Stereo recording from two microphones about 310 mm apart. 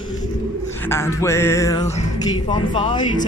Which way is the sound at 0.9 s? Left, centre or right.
Centre.